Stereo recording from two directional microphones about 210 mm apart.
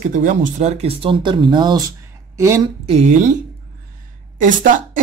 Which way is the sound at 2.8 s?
35° right (ahead or behind).